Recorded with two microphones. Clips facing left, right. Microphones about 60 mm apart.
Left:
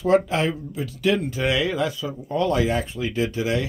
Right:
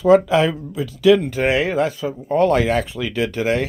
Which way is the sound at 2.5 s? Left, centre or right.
Right.